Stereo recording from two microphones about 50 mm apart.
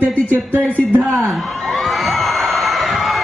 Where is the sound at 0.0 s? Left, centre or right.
Left.